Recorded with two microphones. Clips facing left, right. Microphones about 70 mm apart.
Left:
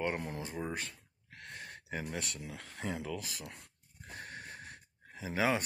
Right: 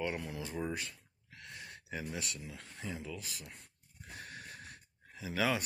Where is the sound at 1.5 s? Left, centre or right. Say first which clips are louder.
Left 2 dB; left.